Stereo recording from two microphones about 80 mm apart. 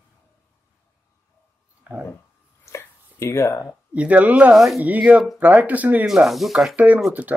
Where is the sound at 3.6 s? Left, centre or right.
Centre.